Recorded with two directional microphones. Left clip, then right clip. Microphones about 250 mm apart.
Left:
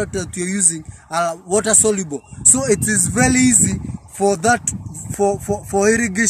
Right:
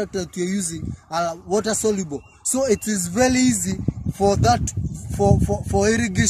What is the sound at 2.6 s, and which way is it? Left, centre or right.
Speech, centre.